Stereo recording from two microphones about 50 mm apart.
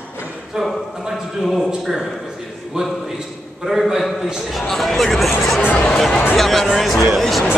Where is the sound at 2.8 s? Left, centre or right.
Centre.